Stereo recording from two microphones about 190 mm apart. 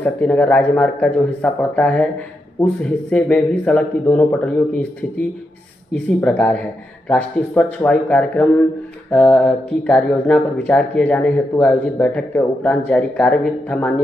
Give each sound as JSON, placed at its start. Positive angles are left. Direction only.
{"t": 0.0, "sound": "a man's voice", "side_deg": 5}
{"t": 6.2, "sound": "a man's voice", "side_deg": 5}